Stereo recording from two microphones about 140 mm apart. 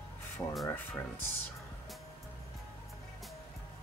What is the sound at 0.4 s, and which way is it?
Speech, 20° left (ahead or behind).